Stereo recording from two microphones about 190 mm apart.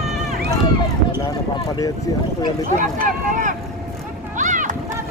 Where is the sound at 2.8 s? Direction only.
40° right (ahead or behind).